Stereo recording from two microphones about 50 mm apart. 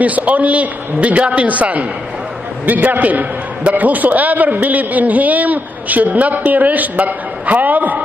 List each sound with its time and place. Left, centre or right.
0.0 s a man's voice: right